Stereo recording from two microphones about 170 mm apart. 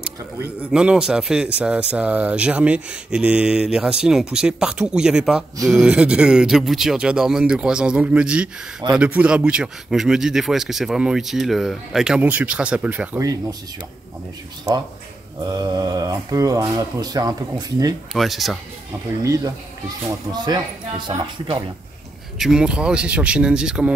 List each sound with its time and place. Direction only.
0.0 s a man's voice: 5° right (ahead or behind)
13.2 s speech: 20° right (ahead or behind)
14.7 s speech: 20° right (ahead or behind)
18.1 s a man's voice: centre (ahead or behind)
19.2 s speech: 20° right (ahead or behind)
22.4 s a man's voice: 5° right (ahead or behind)